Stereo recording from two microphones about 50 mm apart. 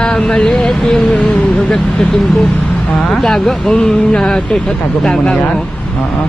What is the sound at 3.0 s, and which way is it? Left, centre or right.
Speech, centre.